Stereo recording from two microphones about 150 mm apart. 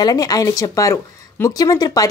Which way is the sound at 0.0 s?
25° left (ahead or behind).